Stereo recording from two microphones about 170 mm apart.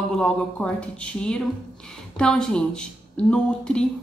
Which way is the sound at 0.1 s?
5° left (ahead or behind).